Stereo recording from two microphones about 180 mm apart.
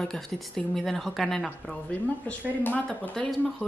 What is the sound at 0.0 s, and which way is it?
A woman's voice, 5° left (ahead or behind).